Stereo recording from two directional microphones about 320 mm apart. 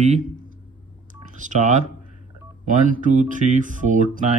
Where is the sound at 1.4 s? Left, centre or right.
Right.